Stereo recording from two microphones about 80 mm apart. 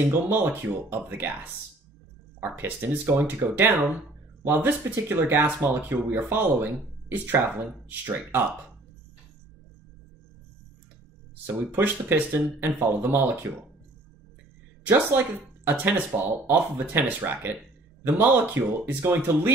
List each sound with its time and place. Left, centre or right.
0.1 s speech: right
2.4 s speech: right
11.4 s speech: right
14.9 s speech: right
16.1 s speech: right
16.4 s speech: right